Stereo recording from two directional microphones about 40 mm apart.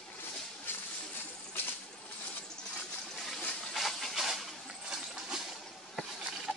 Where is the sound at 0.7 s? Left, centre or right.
Left.